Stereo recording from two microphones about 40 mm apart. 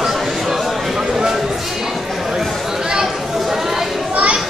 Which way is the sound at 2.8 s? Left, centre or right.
Centre.